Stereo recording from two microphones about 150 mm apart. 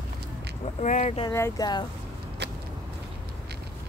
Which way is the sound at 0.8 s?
50° left (ahead or behind).